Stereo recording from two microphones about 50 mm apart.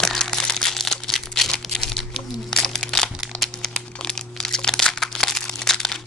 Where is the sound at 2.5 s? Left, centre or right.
Centre.